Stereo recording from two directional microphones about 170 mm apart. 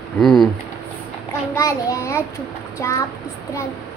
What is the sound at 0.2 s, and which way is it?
Speech, centre (ahead or behind).